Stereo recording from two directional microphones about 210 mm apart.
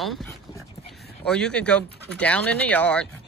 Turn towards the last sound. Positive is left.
turn(degrees=5)  # may be behind; listen again after turning